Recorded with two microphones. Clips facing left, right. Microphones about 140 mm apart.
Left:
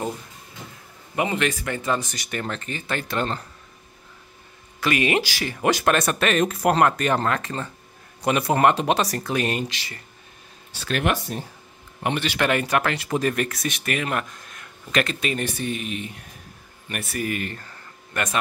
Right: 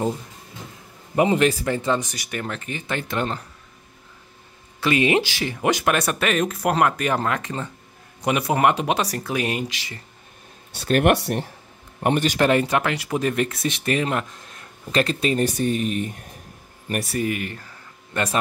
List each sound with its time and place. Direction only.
1.1 s speech: 35° right (ahead or behind)
1.9 s speech: 15° right (ahead or behind)
4.7 s speech: 25° right (ahead or behind)
10.9 s speech: 45° right (ahead or behind)
11.1 s speech: 70° right (ahead or behind)
12.0 s speech: 45° right (ahead or behind)
17.2 s speech: 15° right (ahead or behind)
18.1 s speech: 30° right (ahead or behind)